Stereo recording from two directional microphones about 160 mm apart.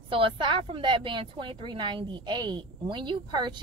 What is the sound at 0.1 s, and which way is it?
Speech, 35° right (ahead or behind).